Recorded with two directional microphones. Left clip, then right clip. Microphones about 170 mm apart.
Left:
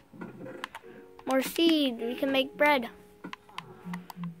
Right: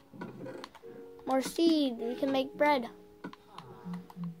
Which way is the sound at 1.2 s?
25° left (ahead or behind).